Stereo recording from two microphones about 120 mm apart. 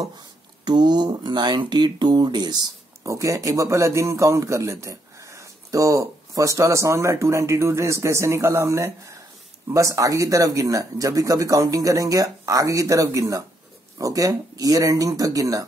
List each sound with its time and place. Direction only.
0.7 s speech: 35° right (ahead or behind)